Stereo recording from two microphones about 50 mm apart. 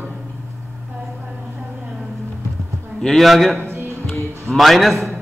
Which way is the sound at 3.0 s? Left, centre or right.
Centre.